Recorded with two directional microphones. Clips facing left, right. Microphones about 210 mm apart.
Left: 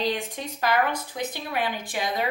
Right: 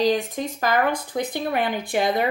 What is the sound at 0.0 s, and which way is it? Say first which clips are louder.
A woman's voice: right 7 dB; 40° right (ahead or behind).